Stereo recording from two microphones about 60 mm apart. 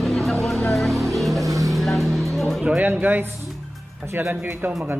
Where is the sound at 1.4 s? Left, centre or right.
Right.